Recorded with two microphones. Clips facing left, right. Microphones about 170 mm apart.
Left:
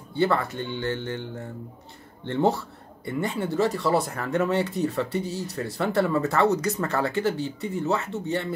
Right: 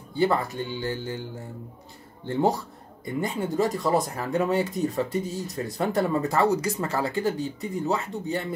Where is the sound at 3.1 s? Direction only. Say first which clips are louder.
Even; 40° right (ahead or behind).